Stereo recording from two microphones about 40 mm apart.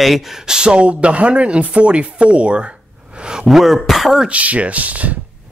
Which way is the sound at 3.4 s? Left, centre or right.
Centre.